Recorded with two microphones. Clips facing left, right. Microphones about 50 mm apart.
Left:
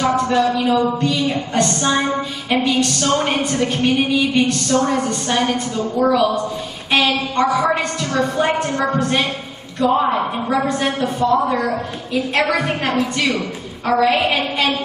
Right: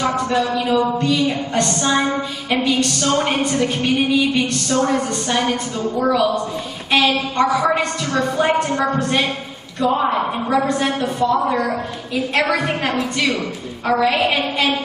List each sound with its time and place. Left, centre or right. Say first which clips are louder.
0.3 s a woman's voice: left 2 dB; centre